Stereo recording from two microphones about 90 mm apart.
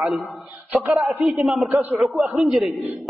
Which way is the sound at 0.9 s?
Centre (ahead or behind).